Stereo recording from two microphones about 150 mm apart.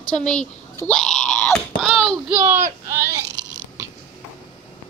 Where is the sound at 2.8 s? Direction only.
15° right (ahead or behind).